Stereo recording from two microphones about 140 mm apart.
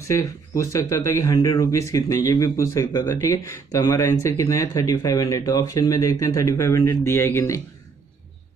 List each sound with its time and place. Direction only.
0.1 s speech: 25° left (ahead or behind)